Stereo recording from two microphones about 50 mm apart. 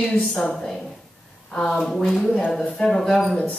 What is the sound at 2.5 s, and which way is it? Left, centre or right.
Speech, centre.